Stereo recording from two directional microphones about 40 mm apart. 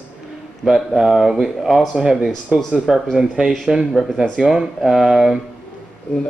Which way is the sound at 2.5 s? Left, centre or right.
Right.